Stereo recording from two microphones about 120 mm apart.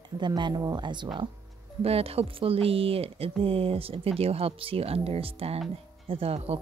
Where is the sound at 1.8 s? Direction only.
55° right (ahead or behind).